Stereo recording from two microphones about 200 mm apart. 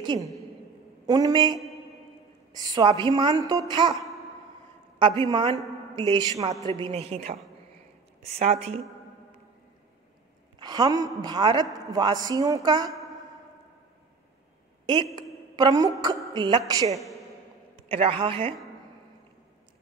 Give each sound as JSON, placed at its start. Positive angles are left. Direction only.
{"t": 0.0, "sound": "a woman's voice", "side_deg": -20}
{"t": 6.7, "sound": "speech", "side_deg": -30}
{"t": 8.4, "sound": "speech", "side_deg": -30}
{"t": 10.6, "sound": "a woman's voice", "side_deg": -20}
{"t": 15.5, "sound": "a woman's voice", "side_deg": -20}